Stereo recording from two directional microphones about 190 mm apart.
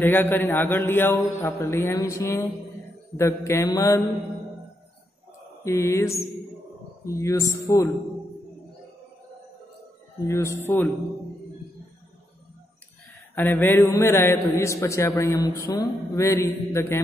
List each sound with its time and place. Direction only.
0.0 s a man's voice: 10° left (ahead or behind)
5.6 s a man's voice: 15° left (ahead or behind)
7.2 s a man's voice: 15° left (ahead or behind)
10.2 s a man's voice: 15° left (ahead or behind)
13.3 s a man's voice: 10° left (ahead or behind)